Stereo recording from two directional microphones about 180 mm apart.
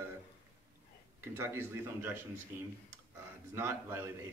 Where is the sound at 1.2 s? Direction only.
15° right (ahead or behind).